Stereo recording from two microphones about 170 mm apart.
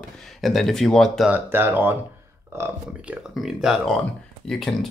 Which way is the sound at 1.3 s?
10° right (ahead or behind).